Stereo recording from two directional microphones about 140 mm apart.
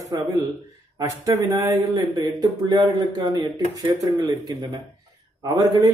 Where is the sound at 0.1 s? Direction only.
25° right (ahead or behind).